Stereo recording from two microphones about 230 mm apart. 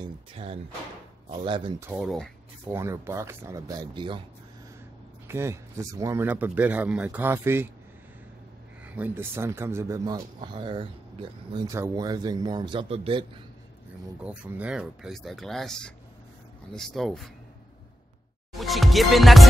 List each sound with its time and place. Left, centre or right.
0.0 s speech: right
1.9 s speech: centre
2.7 s speech: centre
5.3 s speech: centre
8.8 s speech: centre; by 13.4 s right
14.2 s speech: centre
18.5 s speech: centre